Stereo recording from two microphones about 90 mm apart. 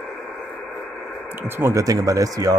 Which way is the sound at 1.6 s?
35° right (ahead or behind).